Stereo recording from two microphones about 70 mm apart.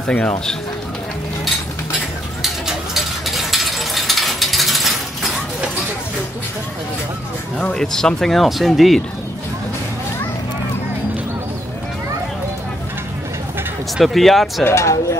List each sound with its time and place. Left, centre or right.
0.0 s speech: centre
2.4 s ratchet: centre
7.5 s speech: centre
13.9 s speech: centre
14.6 s speech: left